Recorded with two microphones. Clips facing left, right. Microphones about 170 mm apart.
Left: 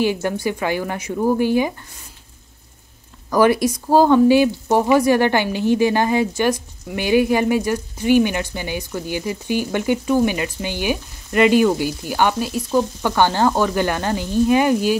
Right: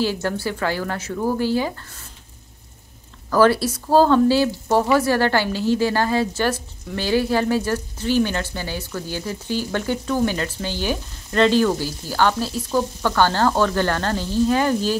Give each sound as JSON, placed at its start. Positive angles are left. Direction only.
{"t": 0.0, "sound": "speech", "side_deg": 15}
{"t": 3.3, "sound": "speech", "side_deg": 15}